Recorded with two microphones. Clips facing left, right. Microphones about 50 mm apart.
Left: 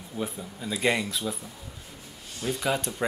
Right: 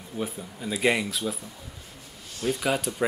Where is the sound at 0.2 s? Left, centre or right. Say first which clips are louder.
Right 1 dB; centre.